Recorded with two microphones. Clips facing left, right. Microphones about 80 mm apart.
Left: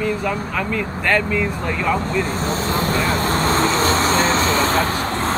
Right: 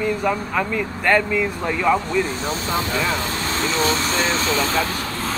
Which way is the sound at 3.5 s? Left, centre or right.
Left.